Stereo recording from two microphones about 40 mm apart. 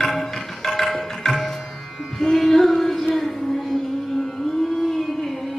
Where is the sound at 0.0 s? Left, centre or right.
Centre.